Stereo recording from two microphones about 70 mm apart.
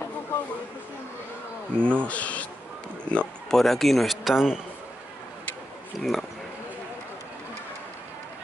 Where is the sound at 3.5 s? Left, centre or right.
Centre.